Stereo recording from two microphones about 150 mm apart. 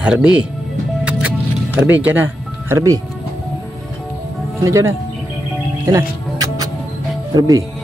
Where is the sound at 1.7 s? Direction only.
10° right (ahead or behind).